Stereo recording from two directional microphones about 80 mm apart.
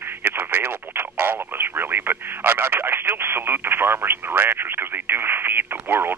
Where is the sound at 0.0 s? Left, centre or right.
Right.